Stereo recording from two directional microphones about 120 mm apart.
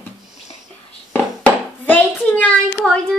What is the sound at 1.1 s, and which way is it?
A child's voice, 15° left (ahead or behind).